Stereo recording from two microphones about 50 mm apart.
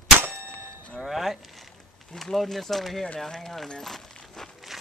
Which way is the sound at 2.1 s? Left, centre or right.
Centre.